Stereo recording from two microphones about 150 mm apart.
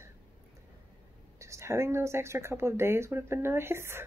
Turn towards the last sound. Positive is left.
turn(degrees=-15)  # may be behind; listen again after turning